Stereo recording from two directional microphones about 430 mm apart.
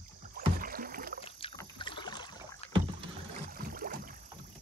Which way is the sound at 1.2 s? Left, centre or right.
Centre.